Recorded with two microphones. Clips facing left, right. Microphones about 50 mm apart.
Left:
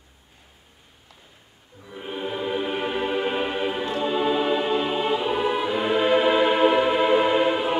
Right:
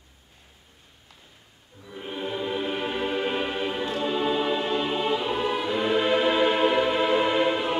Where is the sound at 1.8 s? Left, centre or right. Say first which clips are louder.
Left 2 dB; centre.